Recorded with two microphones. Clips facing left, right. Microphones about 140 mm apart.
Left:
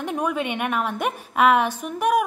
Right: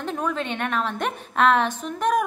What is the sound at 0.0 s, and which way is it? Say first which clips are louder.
A woman's voice: left 2 dB; 15° left (ahead or behind).